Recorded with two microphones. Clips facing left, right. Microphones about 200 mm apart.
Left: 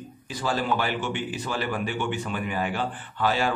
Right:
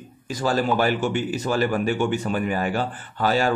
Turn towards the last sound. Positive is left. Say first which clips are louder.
# right 3 dB
turn(degrees=-40)  # may be behind; listen again after turning